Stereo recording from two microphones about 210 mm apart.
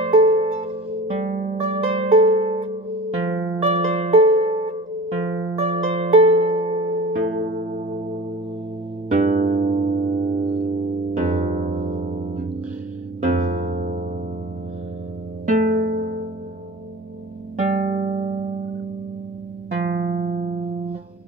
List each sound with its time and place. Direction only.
0.0 s music: 30° right (ahead or behind)
9.1 s music: 40° right (ahead or behind)
15.4 s music: 40° right (ahead or behind)
17.6 s music: 35° right (ahead or behind)
19.9 s music: 45° right (ahead or behind)